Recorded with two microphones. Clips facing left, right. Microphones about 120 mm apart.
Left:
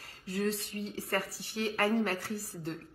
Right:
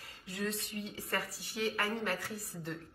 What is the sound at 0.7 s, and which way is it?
Speech, 40° left (ahead or behind).